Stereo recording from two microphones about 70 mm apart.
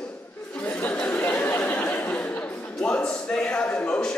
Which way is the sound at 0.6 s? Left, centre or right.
Left.